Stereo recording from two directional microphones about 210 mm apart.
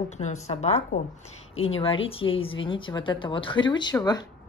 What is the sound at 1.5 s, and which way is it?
Speech, 75° left (ahead or behind).